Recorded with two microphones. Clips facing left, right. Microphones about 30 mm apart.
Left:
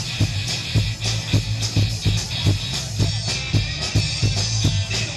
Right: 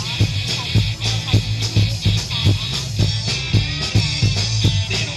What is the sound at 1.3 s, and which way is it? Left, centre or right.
Music, right.